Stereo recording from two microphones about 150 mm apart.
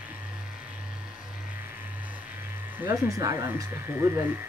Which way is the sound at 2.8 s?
20° right (ahead or behind).